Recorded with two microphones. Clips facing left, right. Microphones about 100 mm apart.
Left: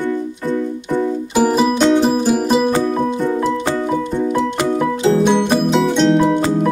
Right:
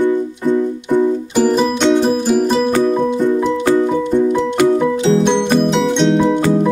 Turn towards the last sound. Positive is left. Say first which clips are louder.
# even
turn(degrees=5)  # may be behind; listen again after turning